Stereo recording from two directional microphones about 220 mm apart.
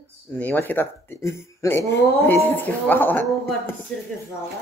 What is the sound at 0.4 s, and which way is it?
Speech, 10° left (ahead or behind).